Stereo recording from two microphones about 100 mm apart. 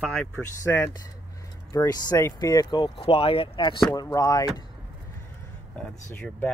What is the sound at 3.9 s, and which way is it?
Speech, 40° left (ahead or behind).